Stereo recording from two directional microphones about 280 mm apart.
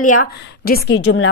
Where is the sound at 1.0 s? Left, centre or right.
Left.